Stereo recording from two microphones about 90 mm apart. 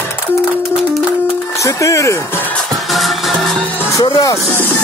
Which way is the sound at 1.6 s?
40° left (ahead or behind).